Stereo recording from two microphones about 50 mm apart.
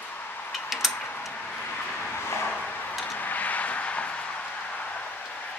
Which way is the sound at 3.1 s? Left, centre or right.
Left.